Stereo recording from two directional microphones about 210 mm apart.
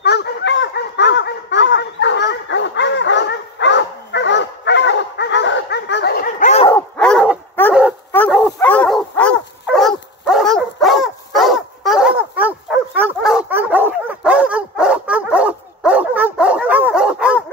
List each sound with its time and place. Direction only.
0.0 s dog: 50° left (ahead or behind); by 6.7 s 35° left (ahead or behind)
6.7 s dog: 5° left (ahead or behind)
8.3 s dog: centre (ahead or behind)